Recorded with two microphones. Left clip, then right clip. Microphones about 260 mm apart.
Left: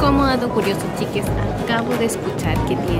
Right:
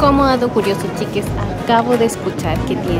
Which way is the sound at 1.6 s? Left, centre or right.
Centre.